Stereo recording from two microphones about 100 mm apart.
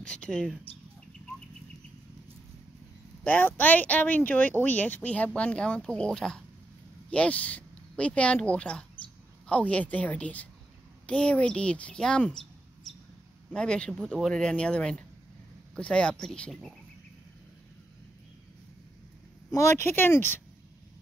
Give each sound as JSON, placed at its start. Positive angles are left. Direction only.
{"t": 0.0, "sound": "speech", "side_deg": 10}
{"t": 3.3, "sound": "speech", "side_deg": 15}
{"t": 13.5, "sound": "speech", "side_deg": 10}
{"t": 19.5, "sound": "speech", "side_deg": 30}